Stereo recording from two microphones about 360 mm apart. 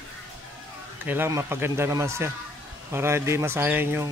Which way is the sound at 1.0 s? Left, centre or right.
Centre.